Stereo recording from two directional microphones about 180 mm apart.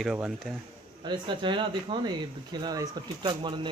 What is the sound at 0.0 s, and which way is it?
Speech, 5° right (ahead or behind).